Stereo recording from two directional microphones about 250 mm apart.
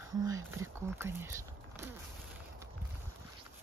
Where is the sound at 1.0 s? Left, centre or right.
Centre.